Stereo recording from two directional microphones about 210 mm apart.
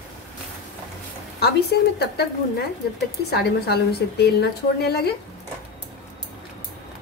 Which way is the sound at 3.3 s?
50° left (ahead or behind).